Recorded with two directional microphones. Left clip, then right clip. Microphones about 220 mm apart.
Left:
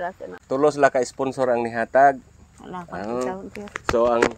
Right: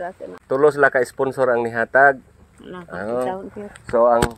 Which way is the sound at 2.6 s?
30° left (ahead or behind).